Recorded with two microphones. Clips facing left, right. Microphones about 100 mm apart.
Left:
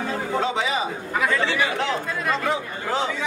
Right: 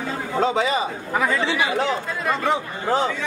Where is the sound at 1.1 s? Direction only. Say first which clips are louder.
Right 1 dB; 20° right (ahead or behind).